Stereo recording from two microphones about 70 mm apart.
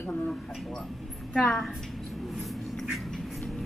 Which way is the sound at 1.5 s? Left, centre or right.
Centre.